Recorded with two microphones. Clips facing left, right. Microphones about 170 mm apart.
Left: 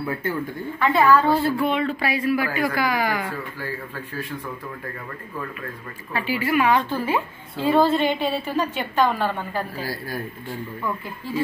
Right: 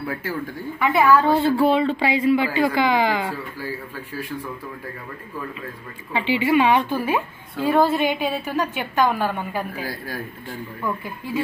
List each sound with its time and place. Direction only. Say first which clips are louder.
0.7 s a woman's voice: right 1 dB; 10° right (ahead or behind)
1.4 s speech: right 4 dB; 30° right (ahead or behind)
6.1 s a woman's voice: right 3 dB; 25° right (ahead or behind)
9.8 s speech: left 1 dB; 10° left (ahead or behind)